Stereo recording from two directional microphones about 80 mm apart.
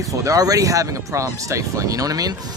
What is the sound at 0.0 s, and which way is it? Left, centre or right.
Speech, right.